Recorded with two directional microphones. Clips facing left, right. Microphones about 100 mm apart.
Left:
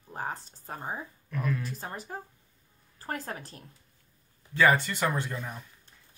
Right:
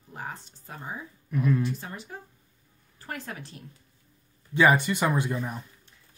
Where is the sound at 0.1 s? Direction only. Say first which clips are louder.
Left 3 dB; 40° left (ahead or behind).